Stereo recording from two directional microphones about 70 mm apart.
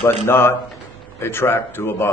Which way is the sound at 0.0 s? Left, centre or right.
Left.